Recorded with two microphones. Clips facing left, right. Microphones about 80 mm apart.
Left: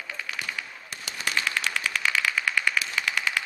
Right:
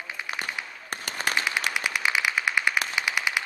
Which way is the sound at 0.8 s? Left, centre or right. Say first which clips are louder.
Right 5 dB; right.